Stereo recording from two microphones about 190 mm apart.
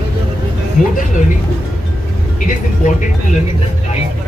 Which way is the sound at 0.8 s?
45° left (ahead or behind).